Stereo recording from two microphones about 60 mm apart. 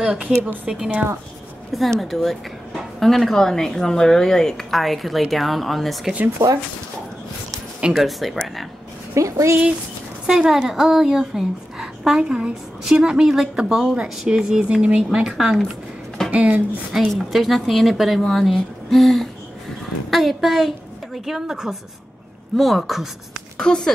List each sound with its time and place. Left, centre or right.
0.0 s a woman's voice: centre
1.7 s speech: centre
6.4 s speech: right
7.9 s speech: centre
9.1 s speech: right
10.2 s a woman's voice: centre
16.3 s speech: right
17.1 s a woman's voice: centre
23.6 s speech: centre